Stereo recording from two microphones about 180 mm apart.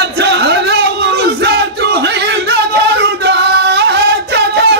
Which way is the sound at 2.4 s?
70° right (ahead or behind).